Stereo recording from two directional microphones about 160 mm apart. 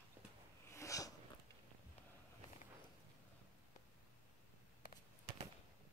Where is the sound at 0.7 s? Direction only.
20° left (ahead or behind).